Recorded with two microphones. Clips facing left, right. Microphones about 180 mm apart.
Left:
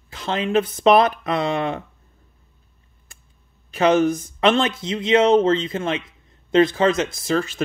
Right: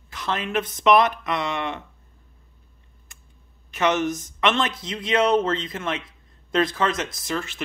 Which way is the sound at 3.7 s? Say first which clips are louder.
Left 6 dB; 30° left (ahead or behind).